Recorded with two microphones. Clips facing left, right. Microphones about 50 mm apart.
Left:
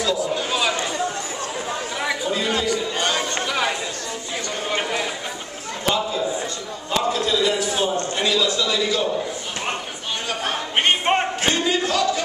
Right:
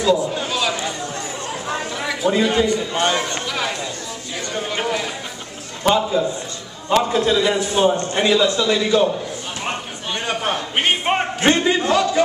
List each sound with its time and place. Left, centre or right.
0.0 s a sound: centre
0.5 s chatter: centre
2.2 s a man's voice: centre
2.6 s a man's voice: right
3.3 s a sound: centre
4.6 s run: centre
5.9 s a man's voice: centre
10.8 s battle cry: centre
11.4 s a sound: right